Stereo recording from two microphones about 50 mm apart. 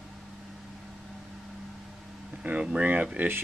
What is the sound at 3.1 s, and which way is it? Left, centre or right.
Speech, right.